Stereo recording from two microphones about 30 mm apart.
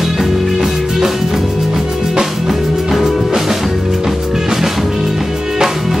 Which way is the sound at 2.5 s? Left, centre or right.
Centre.